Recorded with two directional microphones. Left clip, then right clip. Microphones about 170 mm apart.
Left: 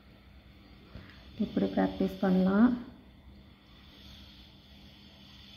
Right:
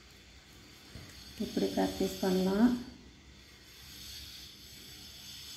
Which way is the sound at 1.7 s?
15° left (ahead or behind).